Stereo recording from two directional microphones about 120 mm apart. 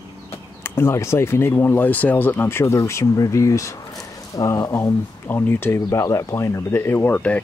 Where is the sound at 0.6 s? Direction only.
20° left (ahead or behind).